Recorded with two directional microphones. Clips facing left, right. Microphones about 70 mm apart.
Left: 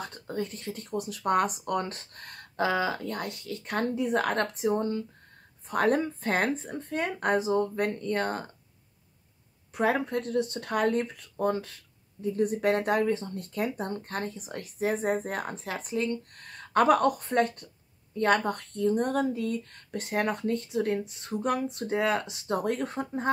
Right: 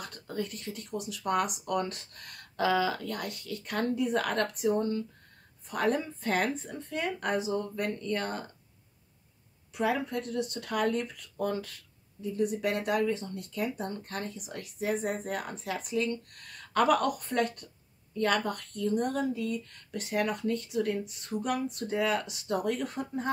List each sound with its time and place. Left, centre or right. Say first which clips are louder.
0.0 s speech: left 2 dB; left
5.7 s speech: left 4 dB; left
9.8 s speech: left 3 dB; left